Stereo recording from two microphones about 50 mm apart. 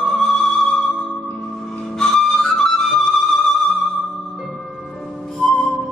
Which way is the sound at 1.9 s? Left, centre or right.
Centre.